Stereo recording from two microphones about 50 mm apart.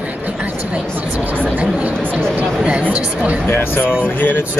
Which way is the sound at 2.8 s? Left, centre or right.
Right.